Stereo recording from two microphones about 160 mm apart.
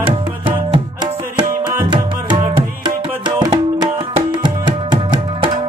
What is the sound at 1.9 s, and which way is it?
Music, 30° right (ahead or behind).